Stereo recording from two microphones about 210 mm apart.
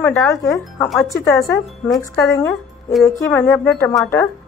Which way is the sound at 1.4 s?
Centre (ahead or behind).